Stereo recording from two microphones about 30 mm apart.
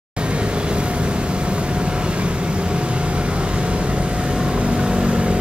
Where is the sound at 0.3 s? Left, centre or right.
Right.